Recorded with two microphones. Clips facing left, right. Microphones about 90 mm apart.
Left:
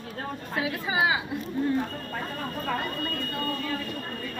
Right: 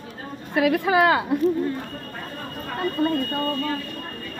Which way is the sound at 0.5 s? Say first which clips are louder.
Right 10 dB; 65° right (ahead or behind).